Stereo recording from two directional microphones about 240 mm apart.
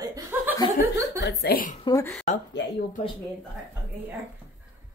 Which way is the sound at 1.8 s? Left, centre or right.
Centre.